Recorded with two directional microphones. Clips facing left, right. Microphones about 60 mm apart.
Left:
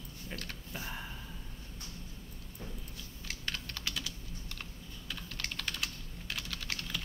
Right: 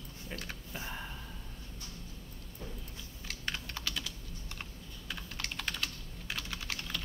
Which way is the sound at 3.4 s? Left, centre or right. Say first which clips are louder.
Right 2 dB; centre.